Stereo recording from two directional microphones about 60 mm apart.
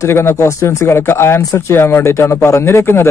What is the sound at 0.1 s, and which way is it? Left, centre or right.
Speech, left.